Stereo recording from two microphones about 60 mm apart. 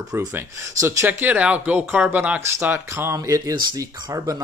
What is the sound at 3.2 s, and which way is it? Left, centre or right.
Speech, right.